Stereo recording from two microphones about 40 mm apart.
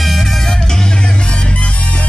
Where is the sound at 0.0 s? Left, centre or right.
Centre.